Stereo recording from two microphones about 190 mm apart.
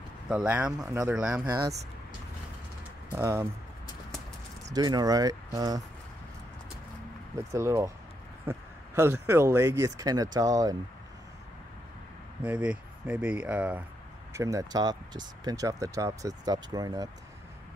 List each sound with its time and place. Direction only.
0.3 s speech: 5° right (ahead or behind)
0.8 s speech: 15° right (ahead or behind)
1.1 s speech: 5° right (ahead or behind)
1.5 s speech: 20° right (ahead or behind)
3.2 s speech: 15° right (ahead or behind)
4.7 s speech: 20° right (ahead or behind)
7.3 s speech: 15° right (ahead or behind)
12.4 s speech: 5° right (ahead or behind)